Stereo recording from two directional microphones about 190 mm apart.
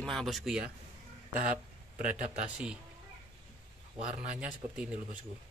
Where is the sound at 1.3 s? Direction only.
40° right (ahead or behind).